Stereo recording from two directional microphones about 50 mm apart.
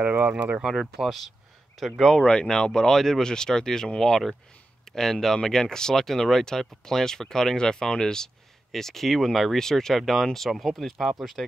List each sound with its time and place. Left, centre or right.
0.0 s speech: right
0.6 s speech: centre
2.0 s speech: centre